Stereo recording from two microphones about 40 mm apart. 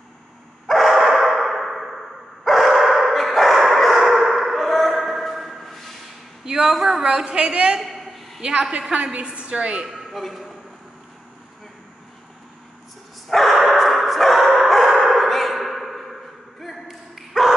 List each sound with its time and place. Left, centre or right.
0.7 s bow-wow: centre
1.1 s a sound: centre
6.4 s a woman's voice: centre
7.8 s a sound: centre
8.4 s a woman's voice: right
9.8 s a man's voice: centre
13.3 s bow-wow: centre
17.1 s dog: centre